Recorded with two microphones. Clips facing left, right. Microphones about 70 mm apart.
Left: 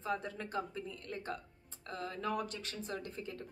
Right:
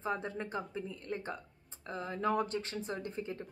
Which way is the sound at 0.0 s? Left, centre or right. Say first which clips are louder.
Right 2 dB; right.